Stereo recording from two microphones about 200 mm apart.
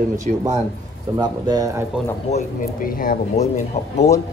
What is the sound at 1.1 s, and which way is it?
Speech, 20° right (ahead or behind).